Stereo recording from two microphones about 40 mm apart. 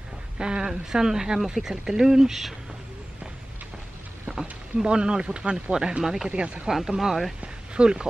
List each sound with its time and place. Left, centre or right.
0.4 s speech: right
4.3 s a sound: centre
4.8 s speech: right
6.3 s speech: right
6.7 s speech: centre
7.7 s speech: right